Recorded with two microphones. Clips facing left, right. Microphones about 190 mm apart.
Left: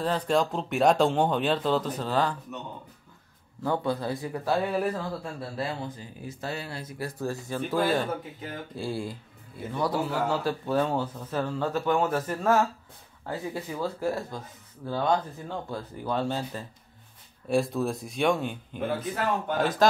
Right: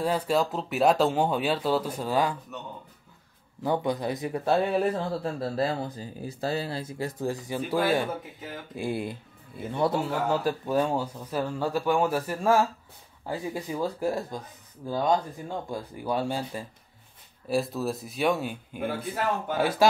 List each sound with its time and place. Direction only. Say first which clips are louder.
0.0 s speech: even; 10° right (ahead or behind)
3.6 s a man's voice: right 1 dB; 15° right (ahead or behind)